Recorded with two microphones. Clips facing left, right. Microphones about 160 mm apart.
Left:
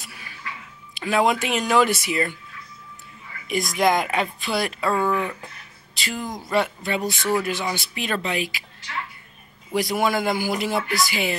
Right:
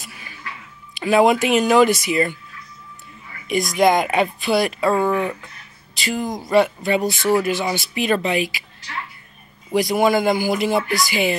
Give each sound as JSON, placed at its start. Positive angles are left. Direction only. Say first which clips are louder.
{"t": 0.0, "sound": "a sound", "louder": "right 2 dB", "side_deg": 0}
{"t": 0.9, "sound": "speech", "louder": "right 6 dB", "side_deg": -5}
{"t": 3.4, "sound": "a woman's voice", "louder": "right 4 dB", "side_deg": 5}
{"t": 4.9, "sound": "speech", "louder": "right 1 dB", "side_deg": -20}
{"t": 5.9, "sound": "speech", "louder": "right 6 dB", "side_deg": 0}
{"t": 9.8, "sound": "speech", "louder": "right 5 dB", "side_deg": 0}